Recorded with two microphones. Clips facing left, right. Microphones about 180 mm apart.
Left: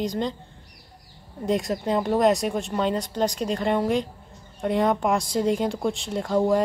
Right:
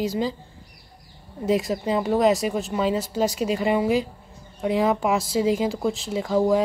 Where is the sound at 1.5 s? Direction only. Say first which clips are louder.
Right 1 dB; centre (ahead or behind).